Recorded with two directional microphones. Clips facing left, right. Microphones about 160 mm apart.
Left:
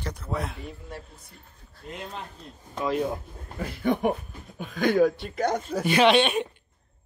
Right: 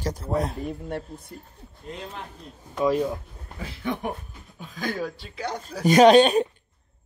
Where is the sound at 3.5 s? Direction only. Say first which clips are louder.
Left 4 dB; 50° left (ahead or behind).